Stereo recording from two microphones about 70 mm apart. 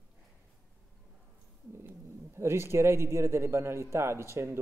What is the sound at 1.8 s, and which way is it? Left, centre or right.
Speech, right.